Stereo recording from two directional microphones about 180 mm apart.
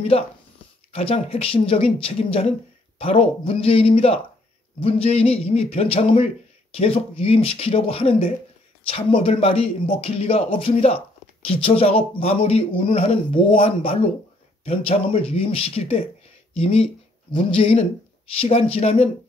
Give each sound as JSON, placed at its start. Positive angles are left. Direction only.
{"t": 0.9, "sound": "a man's voice", "side_deg": 30}